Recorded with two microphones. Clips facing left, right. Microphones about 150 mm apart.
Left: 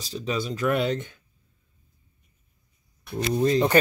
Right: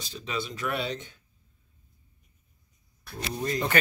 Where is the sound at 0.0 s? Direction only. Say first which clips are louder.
Left 5 dB; 40° left (ahead or behind).